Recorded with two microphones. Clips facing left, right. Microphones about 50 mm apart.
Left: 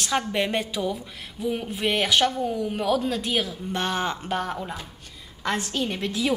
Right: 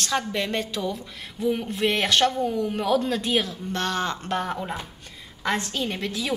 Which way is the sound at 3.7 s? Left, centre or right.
Centre.